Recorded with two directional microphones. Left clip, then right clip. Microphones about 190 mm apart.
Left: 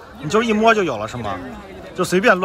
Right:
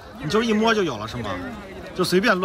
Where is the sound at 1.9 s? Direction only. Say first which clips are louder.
Left 4 dB; 20° right (ahead or behind).